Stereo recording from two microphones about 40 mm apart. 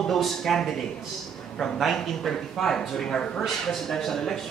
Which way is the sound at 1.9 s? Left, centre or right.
Centre.